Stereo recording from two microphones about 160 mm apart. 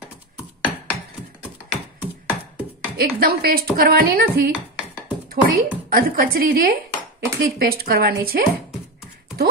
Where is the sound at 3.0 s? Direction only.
70° right (ahead or behind).